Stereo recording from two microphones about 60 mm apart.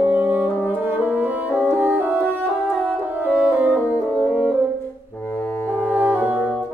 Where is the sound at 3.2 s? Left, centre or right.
Right.